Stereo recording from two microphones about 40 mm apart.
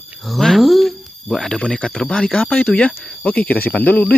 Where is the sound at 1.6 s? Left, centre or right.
Left.